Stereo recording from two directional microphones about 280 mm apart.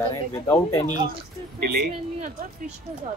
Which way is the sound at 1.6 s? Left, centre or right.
Right.